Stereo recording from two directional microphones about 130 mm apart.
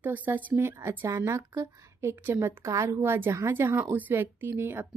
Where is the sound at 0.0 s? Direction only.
15° right (ahead or behind).